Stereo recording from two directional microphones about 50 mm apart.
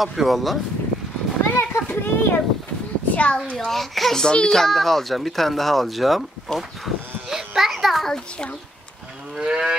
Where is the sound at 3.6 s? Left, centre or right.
Centre.